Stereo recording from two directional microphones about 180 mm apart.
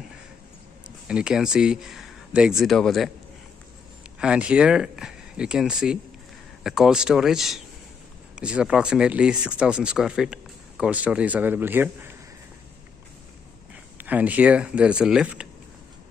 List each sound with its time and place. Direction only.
1.0 s speech: 5° right (ahead or behind)
4.2 s speech: 5° right (ahead or behind)
13.9 s speech: 10° right (ahead or behind)